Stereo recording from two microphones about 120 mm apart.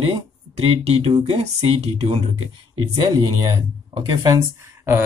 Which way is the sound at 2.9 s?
40° right (ahead or behind).